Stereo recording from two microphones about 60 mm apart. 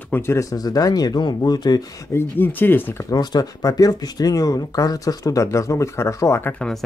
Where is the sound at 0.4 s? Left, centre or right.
Left.